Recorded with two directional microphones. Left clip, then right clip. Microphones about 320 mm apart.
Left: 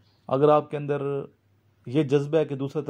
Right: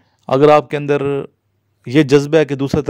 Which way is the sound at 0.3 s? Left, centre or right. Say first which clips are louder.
Right 10 dB; right.